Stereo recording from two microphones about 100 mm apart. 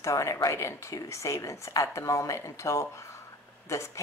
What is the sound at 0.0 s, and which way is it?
Speech, 30° left (ahead or behind).